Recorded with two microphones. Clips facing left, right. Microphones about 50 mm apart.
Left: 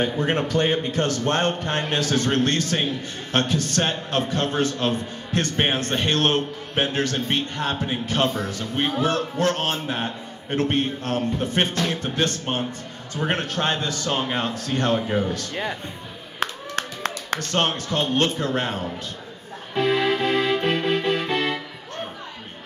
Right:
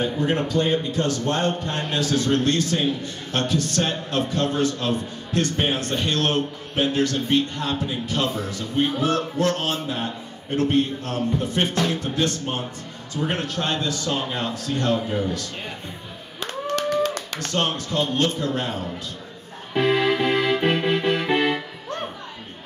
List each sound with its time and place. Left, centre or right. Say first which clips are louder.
0.2 s a man's voice: right 2 dB; left
16.3 s clapping: right 2 dB; left
17.5 s a man's voice: even; left
19.7 s music: right 1 dB; centre